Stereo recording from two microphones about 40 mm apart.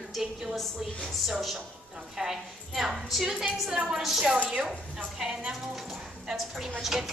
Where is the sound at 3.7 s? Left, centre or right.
Right.